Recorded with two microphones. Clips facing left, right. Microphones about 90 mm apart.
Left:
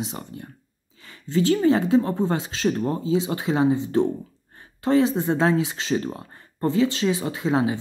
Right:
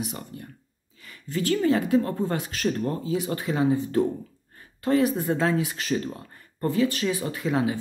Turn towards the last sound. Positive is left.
turn(degrees=25)  # may be behind; listen again after turning